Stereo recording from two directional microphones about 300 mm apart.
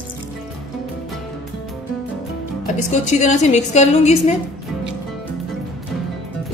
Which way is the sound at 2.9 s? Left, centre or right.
Left.